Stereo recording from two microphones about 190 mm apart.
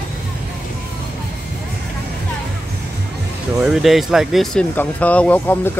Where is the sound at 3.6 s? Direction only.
Centre (ahead or behind).